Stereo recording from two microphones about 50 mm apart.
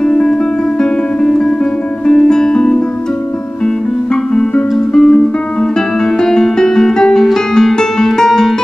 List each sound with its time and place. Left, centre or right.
0.0 s music: centre